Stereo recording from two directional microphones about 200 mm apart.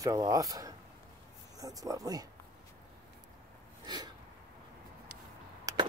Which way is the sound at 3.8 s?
20° right (ahead or behind).